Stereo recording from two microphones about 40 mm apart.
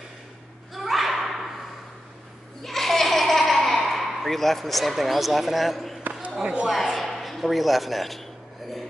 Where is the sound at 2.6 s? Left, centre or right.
Centre.